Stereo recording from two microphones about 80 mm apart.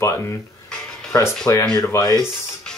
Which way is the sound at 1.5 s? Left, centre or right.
Left.